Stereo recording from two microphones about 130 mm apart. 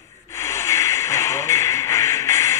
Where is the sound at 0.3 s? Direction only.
20° left (ahead or behind).